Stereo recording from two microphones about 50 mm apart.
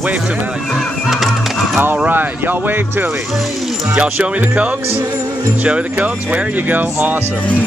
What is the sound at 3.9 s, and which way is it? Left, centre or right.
Speech, right.